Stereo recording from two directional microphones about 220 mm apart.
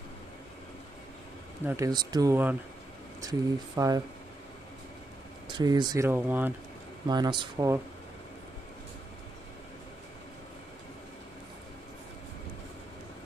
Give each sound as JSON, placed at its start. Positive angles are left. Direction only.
{"t": 1.7, "sound": "speech", "side_deg": -15}
{"t": 5.6, "sound": "speech", "side_deg": -15}
{"t": 7.1, "sound": "speech", "side_deg": -20}